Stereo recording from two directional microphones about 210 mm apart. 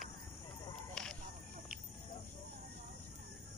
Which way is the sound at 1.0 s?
5° left (ahead or behind).